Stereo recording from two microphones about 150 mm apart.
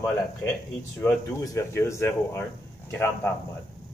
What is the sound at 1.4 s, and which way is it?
Speech, 20° left (ahead or behind).